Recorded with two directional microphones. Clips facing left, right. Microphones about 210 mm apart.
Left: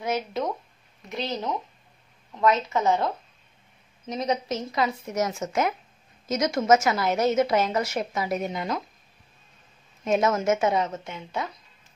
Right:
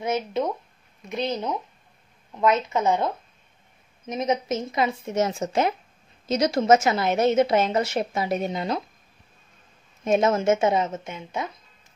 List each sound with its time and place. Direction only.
0.0 s a woman's voice: 25° right (ahead or behind)
4.1 s a woman's voice: 20° right (ahead or behind)
10.0 s a woman's voice: 25° right (ahead or behind)